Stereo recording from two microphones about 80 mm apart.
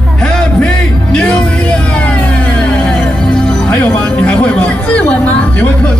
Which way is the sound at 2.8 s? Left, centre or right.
Centre.